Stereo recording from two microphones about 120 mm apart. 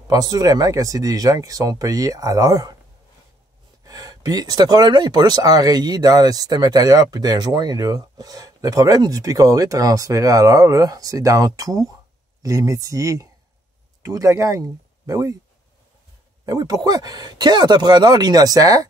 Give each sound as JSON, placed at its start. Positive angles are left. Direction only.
{"t": 0.1, "sound": "speech", "side_deg": -30}
{"t": 3.8, "sound": "speech", "side_deg": -30}
{"t": 16.4, "sound": "speech", "side_deg": -30}